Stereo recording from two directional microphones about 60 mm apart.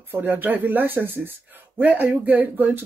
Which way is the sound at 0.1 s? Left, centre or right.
Right.